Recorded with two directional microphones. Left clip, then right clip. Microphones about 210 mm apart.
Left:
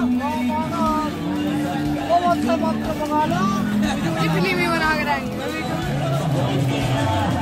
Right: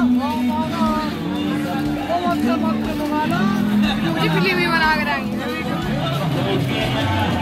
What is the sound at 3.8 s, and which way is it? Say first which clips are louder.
Music: right 2 dB; 55° left (ahead or behind).